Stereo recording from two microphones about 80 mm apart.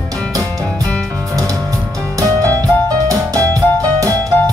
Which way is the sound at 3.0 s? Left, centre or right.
Right.